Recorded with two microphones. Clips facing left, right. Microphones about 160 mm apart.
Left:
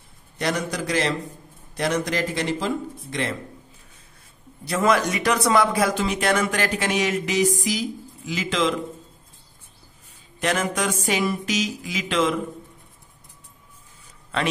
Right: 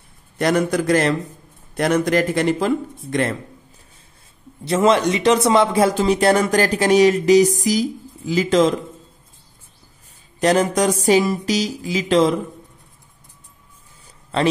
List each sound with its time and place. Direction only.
0.4 s a man's voice: 55° right (ahead or behind)
4.6 s speech: 25° right (ahead or behind); by 8.7 s 40° right (ahead or behind)
10.4 s speech: 35° right (ahead or behind)